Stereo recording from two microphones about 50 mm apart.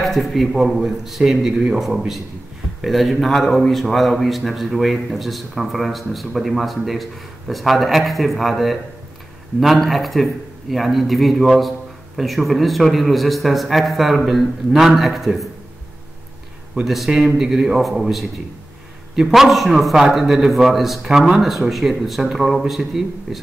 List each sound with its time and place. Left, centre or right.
0.0 s a man's voice: centre
2.8 s a man's voice: centre
16.8 s a man's voice: centre